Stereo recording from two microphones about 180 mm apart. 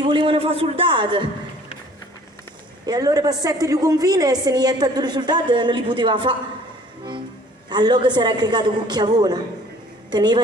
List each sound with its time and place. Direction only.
0.0 s a woman's voice: 30° right (ahead or behind)
2.9 s a woman's voice: 20° right (ahead or behind)
7.7 s a woman's voice: 25° right (ahead or behind)